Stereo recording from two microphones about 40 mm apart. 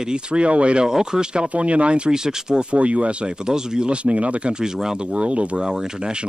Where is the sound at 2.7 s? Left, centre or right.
Right.